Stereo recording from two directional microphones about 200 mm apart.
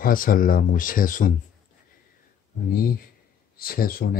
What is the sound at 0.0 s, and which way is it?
Speech, 45° left (ahead or behind).